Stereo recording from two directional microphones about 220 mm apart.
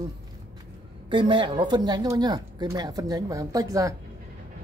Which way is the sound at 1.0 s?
20° right (ahead or behind).